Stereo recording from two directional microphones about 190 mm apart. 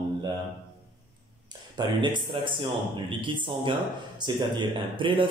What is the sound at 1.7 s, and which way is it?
A man's voice, 25° right (ahead or behind).